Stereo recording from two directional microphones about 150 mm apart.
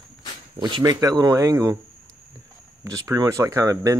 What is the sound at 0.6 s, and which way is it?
Speech, 30° right (ahead or behind).